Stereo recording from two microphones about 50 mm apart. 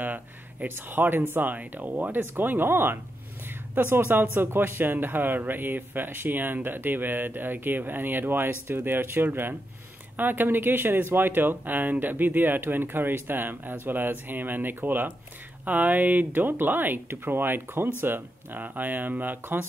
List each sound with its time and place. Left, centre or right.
0.0 s a woman's voice: right